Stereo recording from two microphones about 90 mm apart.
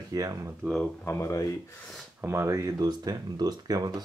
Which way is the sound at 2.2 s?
30° right (ahead or behind).